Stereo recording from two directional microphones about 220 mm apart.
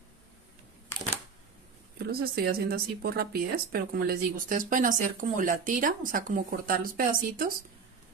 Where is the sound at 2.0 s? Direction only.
45° right (ahead or behind).